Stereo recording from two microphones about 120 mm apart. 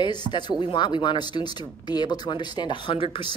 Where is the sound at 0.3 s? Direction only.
40° left (ahead or behind).